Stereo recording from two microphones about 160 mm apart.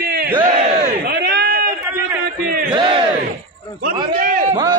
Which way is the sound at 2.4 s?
65° right (ahead or behind).